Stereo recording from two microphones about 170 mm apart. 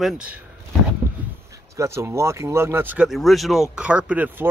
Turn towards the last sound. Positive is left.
turn(degrees=-10)  # may be behind; listen again after turning